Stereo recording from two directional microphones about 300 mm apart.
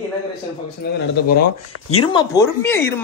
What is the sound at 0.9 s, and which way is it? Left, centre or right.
Speech, left.